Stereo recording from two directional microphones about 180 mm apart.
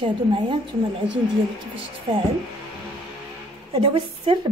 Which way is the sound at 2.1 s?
30° right (ahead or behind).